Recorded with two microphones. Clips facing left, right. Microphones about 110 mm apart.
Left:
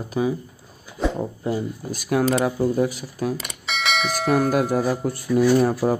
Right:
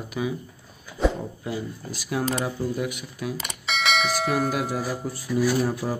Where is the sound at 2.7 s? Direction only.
35° left (ahead or behind).